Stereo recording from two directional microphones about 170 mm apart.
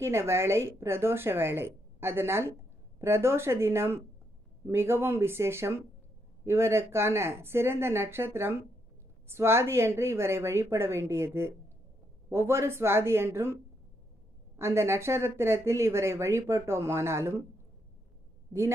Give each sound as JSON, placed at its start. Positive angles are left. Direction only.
{"t": 0.0, "sound": "speech", "side_deg": -15}
{"t": 14.6, "sound": "speech", "side_deg": -15}